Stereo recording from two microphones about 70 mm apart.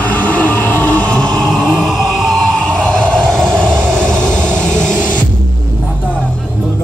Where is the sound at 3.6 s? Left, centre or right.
Centre.